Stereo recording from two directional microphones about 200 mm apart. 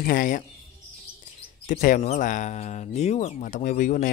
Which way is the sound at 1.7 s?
40° left (ahead or behind).